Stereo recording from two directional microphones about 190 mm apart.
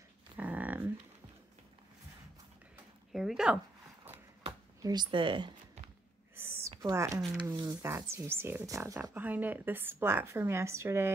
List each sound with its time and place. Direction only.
0.4 s dog: 10° right (ahead or behind)
3.1 s speech: centre (ahead or behind)
4.1 s a sound: 20° right (ahead or behind)
6.7 s speech: 20° right (ahead or behind)